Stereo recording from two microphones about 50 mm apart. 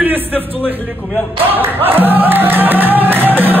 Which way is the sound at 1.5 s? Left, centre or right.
Right.